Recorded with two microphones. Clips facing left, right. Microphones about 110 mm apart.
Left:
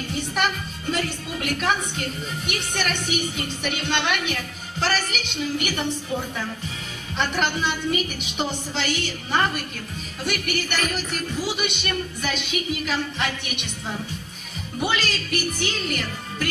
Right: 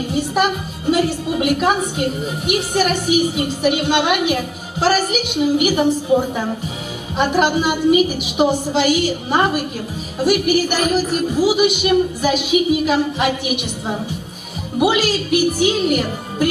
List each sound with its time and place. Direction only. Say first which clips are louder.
0.1 s music: right 7 dB; 10° right (ahead or behind)
2.0 s a woman's voice: right 9 dB; 10° right (ahead or behind)
6.1 s music: right 11 dB; 30° right (ahead or behind)
7.2 s a woman's voice: right 8 dB; 10° right (ahead or behind)
14.9 s a woman's voice: right 8 dB; 10° right (ahead or behind)